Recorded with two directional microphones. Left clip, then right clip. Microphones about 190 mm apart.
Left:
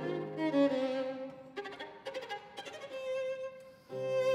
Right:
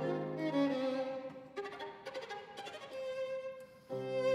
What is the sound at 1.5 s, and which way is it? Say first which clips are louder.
Violin: even; 20° left (ahead or behind).